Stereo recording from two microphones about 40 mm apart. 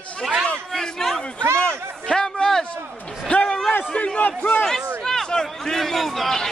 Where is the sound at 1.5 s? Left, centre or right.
Left.